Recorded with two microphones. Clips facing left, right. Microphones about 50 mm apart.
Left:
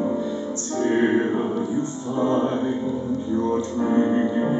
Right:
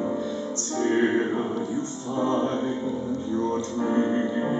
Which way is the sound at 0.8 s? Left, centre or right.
Centre.